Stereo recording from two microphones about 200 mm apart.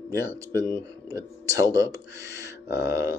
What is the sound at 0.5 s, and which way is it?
Speech, 15° left (ahead or behind).